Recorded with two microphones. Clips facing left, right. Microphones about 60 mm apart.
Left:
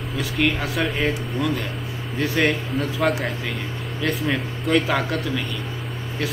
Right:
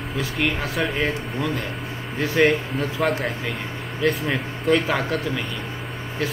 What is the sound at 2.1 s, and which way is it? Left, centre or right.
A man's voice, centre.